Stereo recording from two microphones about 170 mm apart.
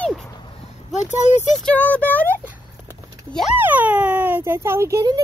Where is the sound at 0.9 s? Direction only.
40° left (ahead or behind).